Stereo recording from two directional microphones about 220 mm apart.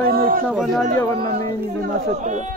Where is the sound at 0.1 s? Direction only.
40° right (ahead or behind).